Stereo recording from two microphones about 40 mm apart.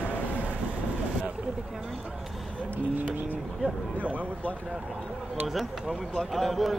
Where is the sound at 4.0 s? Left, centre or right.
Right.